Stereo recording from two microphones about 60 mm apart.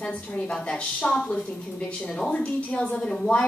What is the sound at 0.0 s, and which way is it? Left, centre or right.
A woman's voice, centre.